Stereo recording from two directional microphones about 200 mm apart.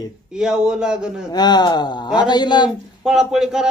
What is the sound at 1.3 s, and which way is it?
Speech, 20° left (ahead or behind).